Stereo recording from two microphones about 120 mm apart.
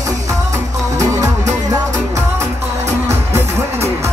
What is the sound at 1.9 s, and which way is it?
Music, 25° right (ahead or behind).